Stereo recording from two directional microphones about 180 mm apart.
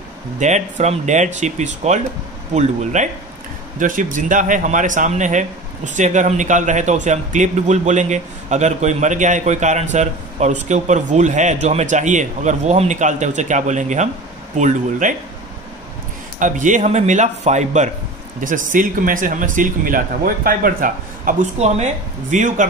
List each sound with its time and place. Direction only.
0.4 s a man's voice: 40° right (ahead or behind)
16.3 s a man's voice: 45° right (ahead or behind)